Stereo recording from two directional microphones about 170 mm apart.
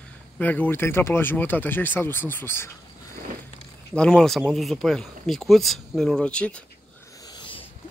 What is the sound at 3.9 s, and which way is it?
Speech, 5° left (ahead or behind).